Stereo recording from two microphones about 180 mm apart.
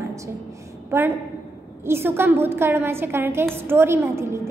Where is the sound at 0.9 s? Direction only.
15° right (ahead or behind).